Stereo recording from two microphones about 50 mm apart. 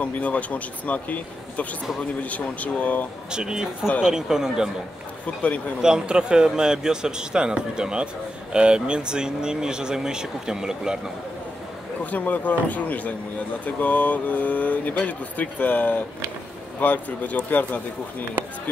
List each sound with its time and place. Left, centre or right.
0.0 s speech: left
3.3 s speech: centre
5.2 s speech: left
5.8 s speech: centre
12.0 s speech: left